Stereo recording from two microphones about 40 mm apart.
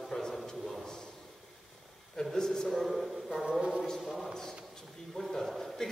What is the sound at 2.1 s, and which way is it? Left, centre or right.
Speech, centre.